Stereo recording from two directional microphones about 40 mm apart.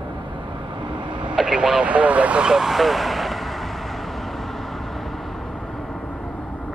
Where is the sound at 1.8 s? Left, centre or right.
Right.